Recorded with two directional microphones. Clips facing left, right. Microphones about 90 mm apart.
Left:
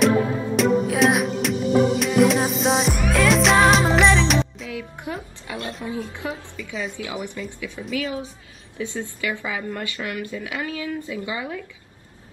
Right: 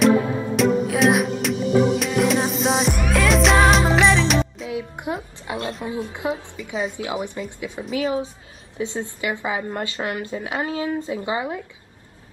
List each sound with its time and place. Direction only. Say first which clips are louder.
0.6 s music: even; centre (ahead or behind)
4.6 s music: right 4 dB; 20° right (ahead or behind)
5.9 s speech: right 3 dB; 20° right (ahead or behind)
6.6 s a woman's voice: right 2 dB; 35° right (ahead or behind)